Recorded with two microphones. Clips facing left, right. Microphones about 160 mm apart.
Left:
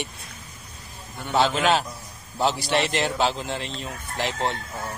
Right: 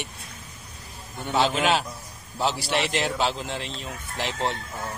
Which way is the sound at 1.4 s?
5° right (ahead or behind).